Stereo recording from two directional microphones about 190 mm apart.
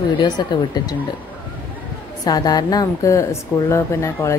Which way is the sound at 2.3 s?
20° left (ahead or behind).